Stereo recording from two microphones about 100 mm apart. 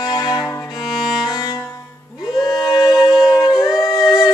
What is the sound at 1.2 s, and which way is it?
Music, 40° left (ahead or behind).